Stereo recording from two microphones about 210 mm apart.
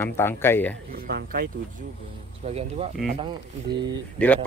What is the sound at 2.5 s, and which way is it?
Speech, 30° right (ahead or behind).